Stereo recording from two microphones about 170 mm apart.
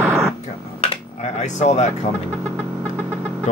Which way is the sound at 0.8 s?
40° left (ahead or behind).